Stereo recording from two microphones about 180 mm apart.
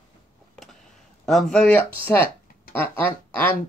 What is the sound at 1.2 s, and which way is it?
Speech, centre (ahead or behind).